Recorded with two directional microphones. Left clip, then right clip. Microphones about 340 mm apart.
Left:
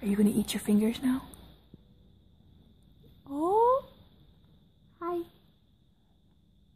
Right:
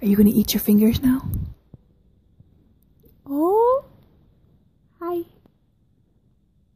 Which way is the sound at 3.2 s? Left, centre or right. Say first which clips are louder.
Right 7 dB; centre.